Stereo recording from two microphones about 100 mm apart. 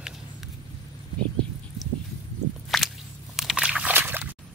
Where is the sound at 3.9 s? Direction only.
20° right (ahead or behind).